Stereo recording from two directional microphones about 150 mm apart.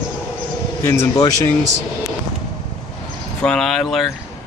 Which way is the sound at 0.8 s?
20° left (ahead or behind).